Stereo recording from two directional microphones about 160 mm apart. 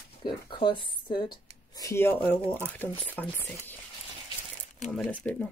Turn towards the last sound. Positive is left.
turn(degrees=5)  # may be behind; listen again after turning